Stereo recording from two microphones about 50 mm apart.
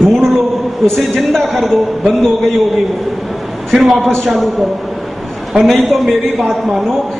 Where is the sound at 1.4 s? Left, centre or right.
Centre.